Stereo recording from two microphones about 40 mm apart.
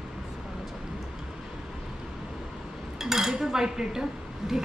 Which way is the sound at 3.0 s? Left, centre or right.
Centre.